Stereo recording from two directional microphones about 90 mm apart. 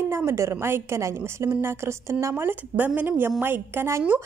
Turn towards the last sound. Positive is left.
turn(degrees=-25)  # may be behind; listen again after turning